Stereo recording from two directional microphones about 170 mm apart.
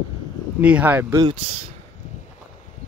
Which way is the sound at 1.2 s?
35° right (ahead or behind).